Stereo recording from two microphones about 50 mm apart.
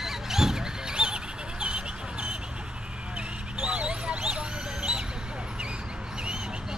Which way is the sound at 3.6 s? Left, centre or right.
Right.